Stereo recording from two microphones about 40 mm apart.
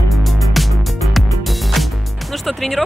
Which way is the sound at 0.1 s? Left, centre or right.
Centre.